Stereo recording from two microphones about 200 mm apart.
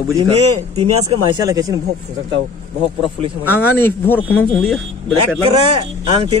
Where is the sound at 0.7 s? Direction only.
30° right (ahead or behind).